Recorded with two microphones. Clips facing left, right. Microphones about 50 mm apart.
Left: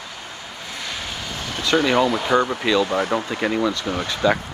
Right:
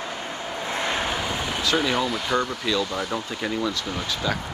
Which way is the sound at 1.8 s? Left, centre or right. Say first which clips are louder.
Left 6 dB; centre.